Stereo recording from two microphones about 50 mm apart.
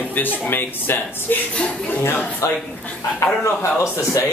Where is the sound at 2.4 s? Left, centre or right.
Left.